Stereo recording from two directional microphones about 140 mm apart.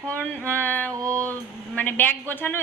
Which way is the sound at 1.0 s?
20° right (ahead or behind).